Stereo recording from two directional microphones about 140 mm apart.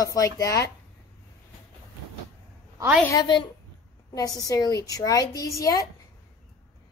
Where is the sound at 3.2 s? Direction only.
35° left (ahead or behind).